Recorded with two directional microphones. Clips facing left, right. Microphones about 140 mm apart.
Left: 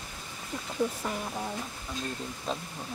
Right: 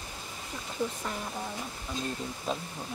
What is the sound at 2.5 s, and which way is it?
Speech, 5° right (ahead or behind).